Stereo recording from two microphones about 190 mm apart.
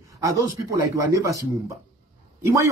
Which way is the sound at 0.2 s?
15° right (ahead or behind).